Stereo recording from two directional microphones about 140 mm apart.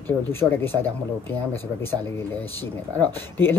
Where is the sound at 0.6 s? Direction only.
15° left (ahead or behind).